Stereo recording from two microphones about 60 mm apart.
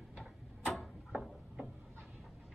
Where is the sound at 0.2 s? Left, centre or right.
Centre.